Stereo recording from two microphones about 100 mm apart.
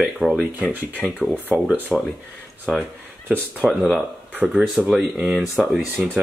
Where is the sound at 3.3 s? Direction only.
10° left (ahead or behind).